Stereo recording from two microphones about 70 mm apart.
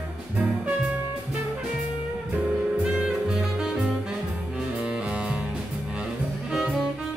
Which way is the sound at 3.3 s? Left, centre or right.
Centre.